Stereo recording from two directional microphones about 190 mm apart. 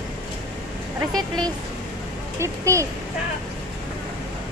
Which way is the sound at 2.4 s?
15° right (ahead or behind).